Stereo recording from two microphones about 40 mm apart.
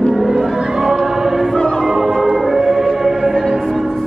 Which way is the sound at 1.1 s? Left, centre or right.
Centre.